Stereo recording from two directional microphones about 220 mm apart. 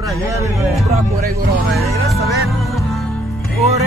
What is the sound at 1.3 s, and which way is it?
Speech, 45° right (ahead or behind).